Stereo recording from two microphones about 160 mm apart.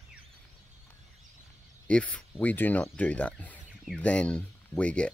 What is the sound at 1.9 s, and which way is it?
Speech, 5° left (ahead or behind).